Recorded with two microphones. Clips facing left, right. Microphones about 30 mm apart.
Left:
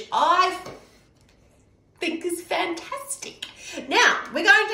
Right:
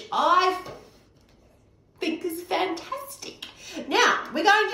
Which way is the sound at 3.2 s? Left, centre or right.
Left.